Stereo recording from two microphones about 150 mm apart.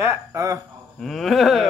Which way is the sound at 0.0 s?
20° right (ahead or behind).